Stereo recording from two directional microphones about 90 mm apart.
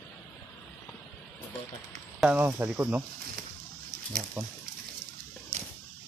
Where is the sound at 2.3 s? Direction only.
20° right (ahead or behind).